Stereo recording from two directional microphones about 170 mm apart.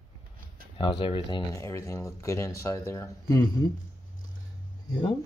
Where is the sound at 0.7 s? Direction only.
30° left (ahead or behind).